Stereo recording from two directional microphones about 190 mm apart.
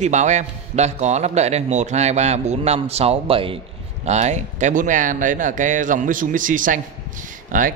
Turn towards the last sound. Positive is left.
turn(degrees=-45)  # may be behind; listen again after turning